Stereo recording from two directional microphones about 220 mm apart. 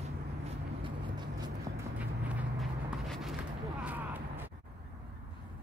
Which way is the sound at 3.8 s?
5° right (ahead or behind).